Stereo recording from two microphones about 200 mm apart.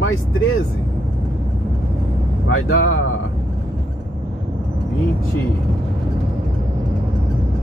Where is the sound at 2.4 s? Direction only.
90° left.